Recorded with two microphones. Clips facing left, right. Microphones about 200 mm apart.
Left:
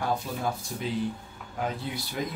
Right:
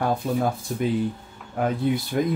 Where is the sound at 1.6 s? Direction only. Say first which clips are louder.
Right 9 dB; 55° right (ahead or behind).